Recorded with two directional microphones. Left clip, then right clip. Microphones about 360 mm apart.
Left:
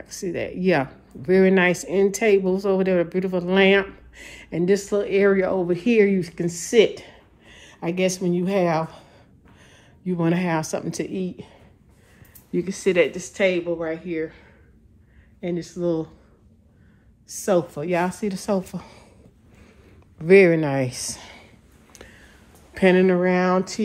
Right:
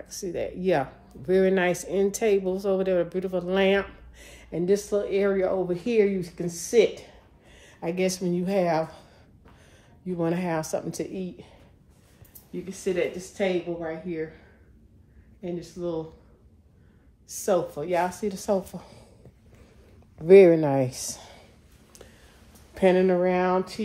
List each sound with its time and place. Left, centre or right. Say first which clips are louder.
0.0 s speech: left 3 dB; centre
12.5 s speech: left 8 dB; centre
13.4 s a woman's voice: left 6 dB; centre
15.4 s speech: left 7 dB; left
17.3 s speech: left 3 dB; left
20.2 s speech: even; left
21.9 s a sound: left 5 dB; centre
22.8 s speech: left 3 dB; left